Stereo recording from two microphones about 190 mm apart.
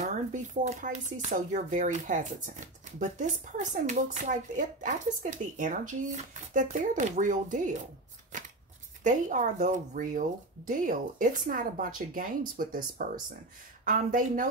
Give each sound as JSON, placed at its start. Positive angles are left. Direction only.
{"t": 0.0, "sound": "speech", "side_deg": -40}
{"t": 8.3, "sound": "shuffling cards", "side_deg": -40}
{"t": 9.0, "sound": "speech", "side_deg": -40}